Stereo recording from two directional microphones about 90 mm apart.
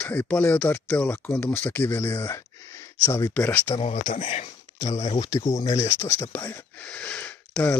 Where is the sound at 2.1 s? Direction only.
35° left (ahead or behind).